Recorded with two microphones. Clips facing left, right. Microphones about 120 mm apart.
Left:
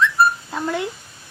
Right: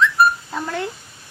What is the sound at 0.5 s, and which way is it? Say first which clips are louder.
Speech: left 2 dB; 15° left (ahead or behind).